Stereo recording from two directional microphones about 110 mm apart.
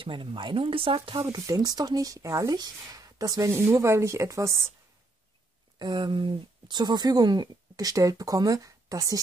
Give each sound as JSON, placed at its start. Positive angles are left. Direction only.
{"t": 0.0, "sound": "speech", "side_deg": -50}
{"t": 1.2, "sound": "speech", "side_deg": -30}
{"t": 5.8, "sound": "speech", "side_deg": -40}